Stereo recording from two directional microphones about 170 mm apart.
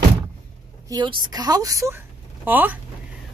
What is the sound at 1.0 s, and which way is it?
A woman's voice, 25° right (ahead or behind).